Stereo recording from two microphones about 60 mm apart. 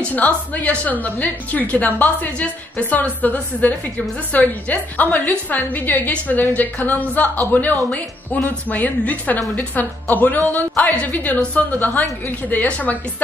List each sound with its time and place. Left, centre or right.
0.0 s a woman's voice: left